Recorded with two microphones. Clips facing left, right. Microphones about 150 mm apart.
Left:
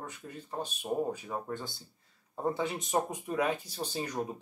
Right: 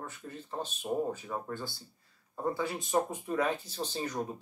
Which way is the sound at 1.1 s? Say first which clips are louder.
Left 1 dB; 15° left (ahead or behind).